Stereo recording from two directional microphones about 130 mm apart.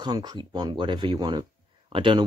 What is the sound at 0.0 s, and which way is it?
Speech, 30° right (ahead or behind).